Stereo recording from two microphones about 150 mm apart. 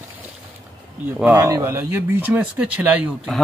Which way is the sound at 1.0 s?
10° right (ahead or behind).